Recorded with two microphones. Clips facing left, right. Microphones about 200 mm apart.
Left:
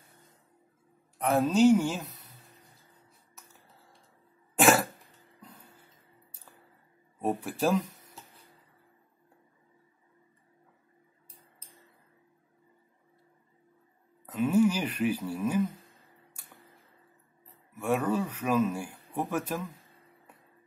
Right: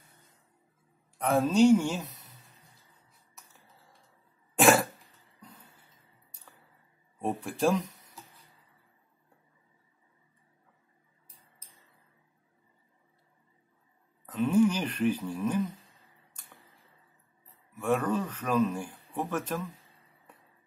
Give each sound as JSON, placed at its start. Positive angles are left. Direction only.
{"t": 1.1, "sound": "a woman's voice", "side_deg": 0}
{"t": 4.6, "sound": "a sound", "side_deg": 0}
{"t": 7.2, "sound": "speech", "side_deg": 5}
{"t": 14.2, "sound": "speech", "side_deg": 10}
{"t": 17.7, "sound": "a man's voice", "side_deg": 10}